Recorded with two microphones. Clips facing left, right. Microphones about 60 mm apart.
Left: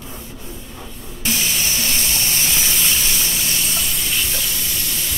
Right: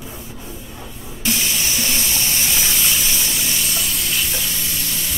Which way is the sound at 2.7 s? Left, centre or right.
Centre.